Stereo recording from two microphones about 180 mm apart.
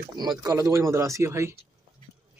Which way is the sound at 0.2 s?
20° right (ahead or behind).